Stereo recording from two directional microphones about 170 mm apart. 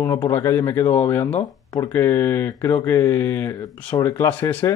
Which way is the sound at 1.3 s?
35° left (ahead or behind).